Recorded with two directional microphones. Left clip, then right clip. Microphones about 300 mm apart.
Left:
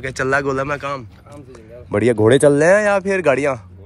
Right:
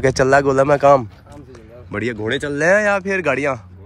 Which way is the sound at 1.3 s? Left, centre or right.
Centre.